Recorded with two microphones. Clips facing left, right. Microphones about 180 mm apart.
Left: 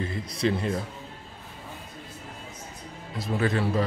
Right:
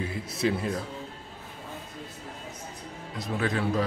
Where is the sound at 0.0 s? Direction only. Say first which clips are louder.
Left 1 dB; 5° right (ahead or behind).